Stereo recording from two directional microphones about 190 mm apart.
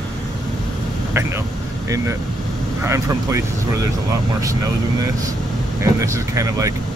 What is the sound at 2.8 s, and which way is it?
Speech, 15° right (ahead or behind).